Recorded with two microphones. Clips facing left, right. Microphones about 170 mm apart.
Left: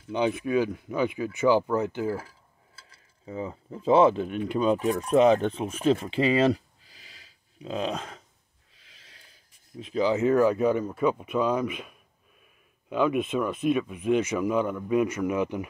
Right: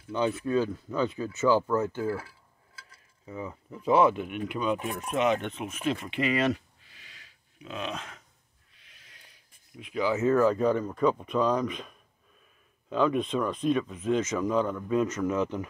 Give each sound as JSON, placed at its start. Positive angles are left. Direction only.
{"t": 0.1, "sound": "speech", "side_deg": 15}
{"t": 2.9, "sound": "cutlery", "side_deg": 30}
{"t": 4.5, "sound": "speech", "side_deg": 35}
{"t": 9.0, "sound": "a sound", "side_deg": 30}
{"t": 10.1, "sound": "speech", "side_deg": 15}